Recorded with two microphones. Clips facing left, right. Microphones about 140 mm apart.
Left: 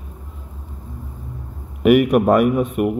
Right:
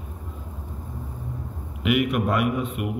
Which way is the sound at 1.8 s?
45° left (ahead or behind).